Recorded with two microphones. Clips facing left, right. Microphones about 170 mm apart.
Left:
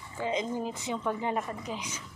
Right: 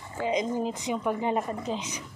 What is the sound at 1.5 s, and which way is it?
Speech, 30° right (ahead or behind).